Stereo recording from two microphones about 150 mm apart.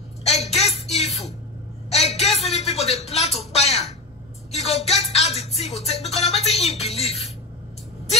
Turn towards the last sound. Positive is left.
turn(degrees=45)  # may be behind; listen again after turning